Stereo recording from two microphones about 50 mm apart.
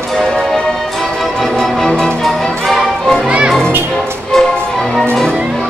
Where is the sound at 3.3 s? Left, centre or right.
Right.